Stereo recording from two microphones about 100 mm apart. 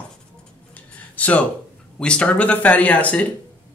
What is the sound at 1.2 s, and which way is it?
Speech, 15° left (ahead or behind).